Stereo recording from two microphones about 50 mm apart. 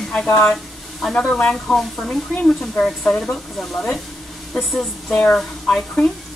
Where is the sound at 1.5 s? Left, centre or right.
Centre.